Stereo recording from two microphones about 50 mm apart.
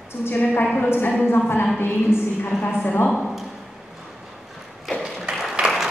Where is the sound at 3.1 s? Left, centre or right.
Centre.